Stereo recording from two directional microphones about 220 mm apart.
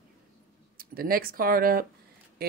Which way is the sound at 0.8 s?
40° right (ahead or behind).